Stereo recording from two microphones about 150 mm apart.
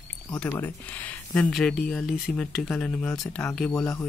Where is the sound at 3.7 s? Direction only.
15° left (ahead or behind).